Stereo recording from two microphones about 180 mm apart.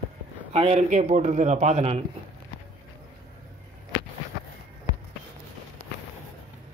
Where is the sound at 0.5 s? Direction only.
35° right (ahead or behind).